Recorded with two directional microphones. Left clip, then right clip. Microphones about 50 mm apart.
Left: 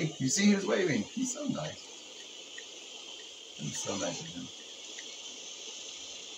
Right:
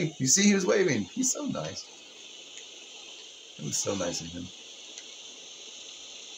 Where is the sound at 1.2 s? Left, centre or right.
Left.